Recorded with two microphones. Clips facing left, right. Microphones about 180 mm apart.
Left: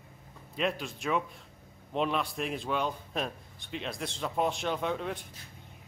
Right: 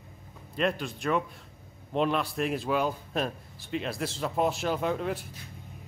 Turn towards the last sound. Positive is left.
turn(degrees=0)  # may be behind; listen again after turning